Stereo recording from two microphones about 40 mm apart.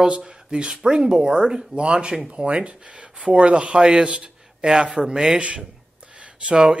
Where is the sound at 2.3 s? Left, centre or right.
Right.